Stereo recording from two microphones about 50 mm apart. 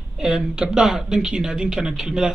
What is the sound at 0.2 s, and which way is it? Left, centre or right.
Speech, centre.